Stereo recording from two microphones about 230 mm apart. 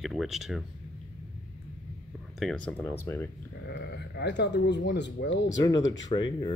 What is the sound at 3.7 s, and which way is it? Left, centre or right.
Speech, left.